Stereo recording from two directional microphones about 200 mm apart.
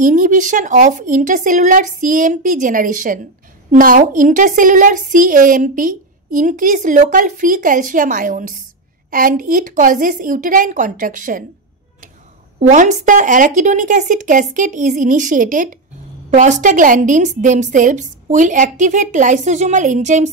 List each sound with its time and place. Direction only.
0.0 s a woman's voice: 40° right (ahead or behind)
12.5 s a woman's voice: 40° right (ahead or behind)